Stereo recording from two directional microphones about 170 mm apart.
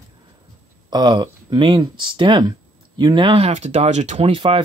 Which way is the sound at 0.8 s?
25° right (ahead or behind).